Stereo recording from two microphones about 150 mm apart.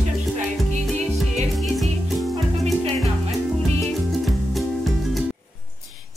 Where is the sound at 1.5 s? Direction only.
Centre (ahead or behind).